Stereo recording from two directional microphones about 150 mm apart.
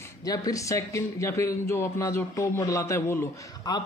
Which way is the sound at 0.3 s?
20° left (ahead or behind).